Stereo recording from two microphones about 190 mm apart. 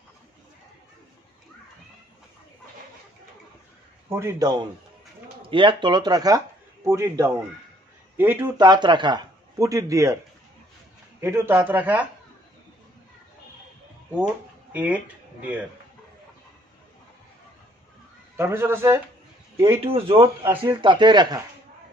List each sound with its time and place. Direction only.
4.1 s a man's voice: 15° right (ahead or behind)
8.5 s speech: 20° right (ahead or behind)
11.1 s a man's voice: 15° right (ahead or behind)
14.7 s speech: 5° right (ahead or behind)
18.3 s a man's voice: 15° right (ahead or behind)
19.8 s speech: 30° right (ahead or behind)